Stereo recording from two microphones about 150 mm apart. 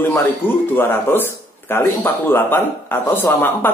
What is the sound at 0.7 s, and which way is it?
A man's voice, 15° left (ahead or behind).